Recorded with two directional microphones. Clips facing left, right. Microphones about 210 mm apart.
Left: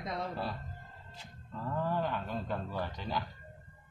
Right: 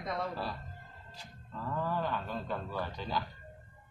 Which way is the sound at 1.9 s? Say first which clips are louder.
Left 1 dB; 15° left (ahead or behind).